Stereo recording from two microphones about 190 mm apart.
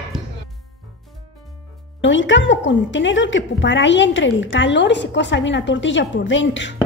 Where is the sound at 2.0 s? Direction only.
80° left.